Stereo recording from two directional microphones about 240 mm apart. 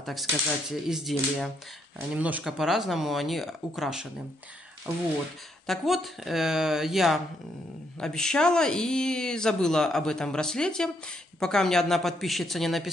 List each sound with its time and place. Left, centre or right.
0.0 s speech: centre
5.7 s speech: centre